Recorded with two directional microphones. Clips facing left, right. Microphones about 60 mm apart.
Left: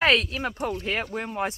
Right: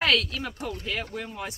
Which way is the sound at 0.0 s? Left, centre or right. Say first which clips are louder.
Left 3 dB; left.